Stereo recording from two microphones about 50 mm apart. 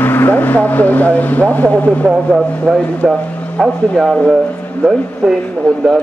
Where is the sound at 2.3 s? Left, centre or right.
Centre.